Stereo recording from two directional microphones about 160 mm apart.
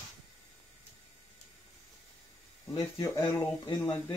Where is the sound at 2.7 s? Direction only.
20° left (ahead or behind).